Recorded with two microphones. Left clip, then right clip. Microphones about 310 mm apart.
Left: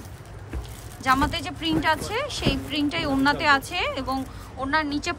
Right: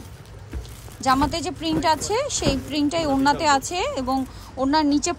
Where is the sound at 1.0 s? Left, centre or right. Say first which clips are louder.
Right 2 dB; centre.